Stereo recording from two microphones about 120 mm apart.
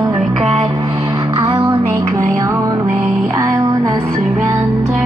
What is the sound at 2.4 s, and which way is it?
Music, 20° right (ahead or behind).